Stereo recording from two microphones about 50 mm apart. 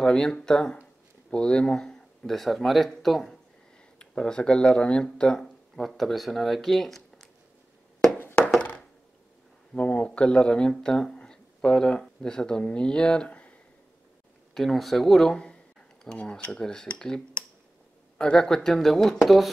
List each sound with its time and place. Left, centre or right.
0.0 s speech: centre
4.0 s speech: centre
5.8 s speech: centre
8.4 s a sound: centre
9.8 s speech: left
14.5 s speech: centre
15.4 s speech: left; by 19.5 s centre